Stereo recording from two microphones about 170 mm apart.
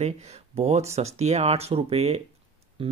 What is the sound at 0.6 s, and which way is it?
Speech, 40° right (ahead or behind).